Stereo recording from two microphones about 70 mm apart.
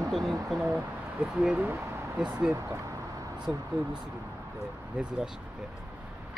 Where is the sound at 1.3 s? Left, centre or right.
Centre.